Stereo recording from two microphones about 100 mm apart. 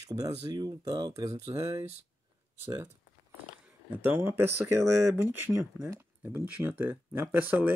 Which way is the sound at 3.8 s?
20° right (ahead or behind).